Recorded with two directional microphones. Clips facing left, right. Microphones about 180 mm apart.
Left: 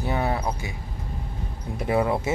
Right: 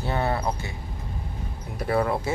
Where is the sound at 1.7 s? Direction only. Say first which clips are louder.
Left 1 dB; 15° left (ahead or behind).